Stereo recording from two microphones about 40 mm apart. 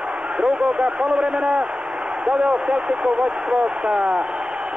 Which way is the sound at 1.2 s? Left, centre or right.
Right.